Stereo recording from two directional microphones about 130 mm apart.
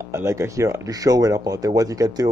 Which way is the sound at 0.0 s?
20° right (ahead or behind).